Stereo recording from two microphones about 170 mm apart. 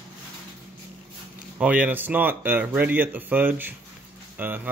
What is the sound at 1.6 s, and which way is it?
Speech, 10° right (ahead or behind).